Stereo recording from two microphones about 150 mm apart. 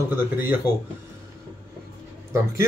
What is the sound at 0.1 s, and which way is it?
Speech, 15° right (ahead or behind).